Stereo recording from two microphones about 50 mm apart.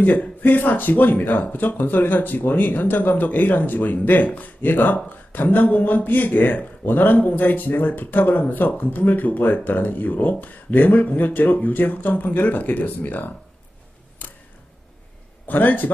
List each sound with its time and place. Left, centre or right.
0.0 s speech: left
14.2 s a sound: left
15.4 s speech: left